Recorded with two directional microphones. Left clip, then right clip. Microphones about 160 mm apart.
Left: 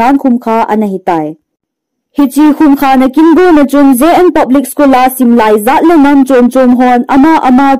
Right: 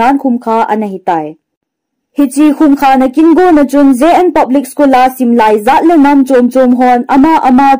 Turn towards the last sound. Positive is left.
turn(degrees=30)  # may be behind; listen again after turning